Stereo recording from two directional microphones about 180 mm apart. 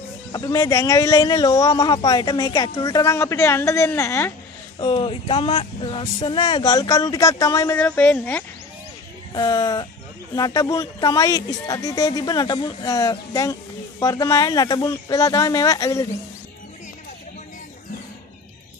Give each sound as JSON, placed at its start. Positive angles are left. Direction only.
{"t": 0.3, "sound": "speech", "side_deg": 20}
{"t": 4.7, "sound": "speech", "side_deg": 30}
{"t": 9.3, "sound": "speech", "side_deg": 20}